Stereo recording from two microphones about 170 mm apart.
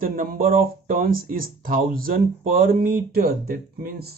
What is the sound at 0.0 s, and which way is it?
Speech, 55° right (ahead or behind).